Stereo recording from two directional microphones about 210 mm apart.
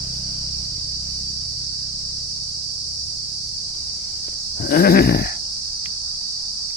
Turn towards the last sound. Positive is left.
turn(degrees=50)  # may be behind; listen again after turning